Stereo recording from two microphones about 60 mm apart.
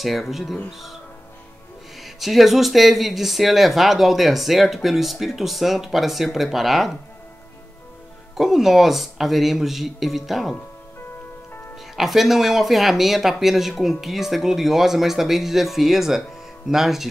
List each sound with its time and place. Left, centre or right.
0.0 s speech: centre
2.0 s speech: centre
8.4 s speech: centre
11.9 s speech: centre